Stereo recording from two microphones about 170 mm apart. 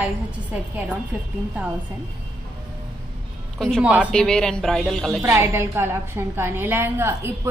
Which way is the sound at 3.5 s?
5° left (ahead or behind).